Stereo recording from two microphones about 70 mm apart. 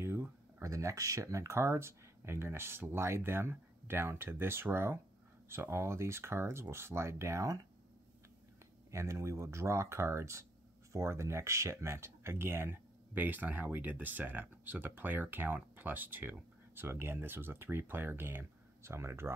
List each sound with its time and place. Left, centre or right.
0.0 s a sound: right
0.6 s speech: right
8.9 s speech: right